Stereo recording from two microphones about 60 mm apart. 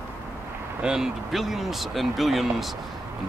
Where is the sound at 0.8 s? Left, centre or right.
Centre.